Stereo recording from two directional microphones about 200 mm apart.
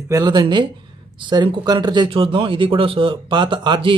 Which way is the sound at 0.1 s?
20° right (ahead or behind).